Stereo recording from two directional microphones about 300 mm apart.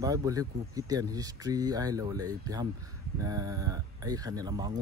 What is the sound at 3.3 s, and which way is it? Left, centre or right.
A man's voice, centre.